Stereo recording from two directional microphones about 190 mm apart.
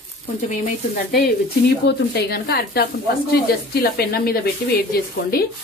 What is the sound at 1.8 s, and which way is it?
A woman's voice, 60° left (ahead or behind).